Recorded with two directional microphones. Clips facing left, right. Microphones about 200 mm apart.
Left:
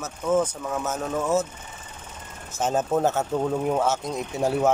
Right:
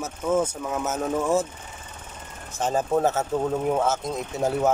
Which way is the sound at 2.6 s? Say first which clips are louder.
Even; 5° left (ahead or behind).